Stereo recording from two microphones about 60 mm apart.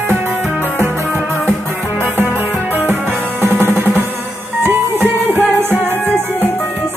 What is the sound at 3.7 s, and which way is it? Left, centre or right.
Music, right.